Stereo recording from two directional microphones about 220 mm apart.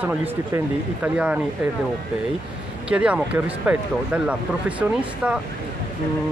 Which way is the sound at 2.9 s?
5° right (ahead or behind).